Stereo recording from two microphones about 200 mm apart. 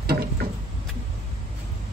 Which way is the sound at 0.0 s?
50° right (ahead or behind).